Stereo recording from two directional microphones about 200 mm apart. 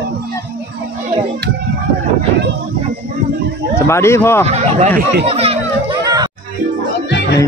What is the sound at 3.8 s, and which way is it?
Speech, 15° left (ahead or behind).